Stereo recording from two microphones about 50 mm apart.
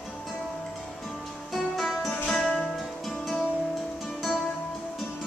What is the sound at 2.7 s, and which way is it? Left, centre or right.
Music, centre.